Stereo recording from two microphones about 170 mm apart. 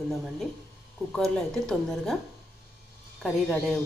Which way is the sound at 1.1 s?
5° left (ahead or behind).